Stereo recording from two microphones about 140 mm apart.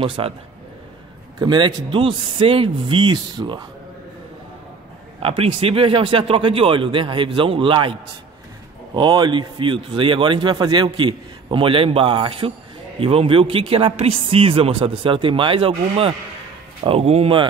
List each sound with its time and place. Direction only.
0.0 s speech: 40° right (ahead or behind)
1.4 s speech: 35° right (ahead or behind)
5.2 s a man's voice: 40° right (ahead or behind)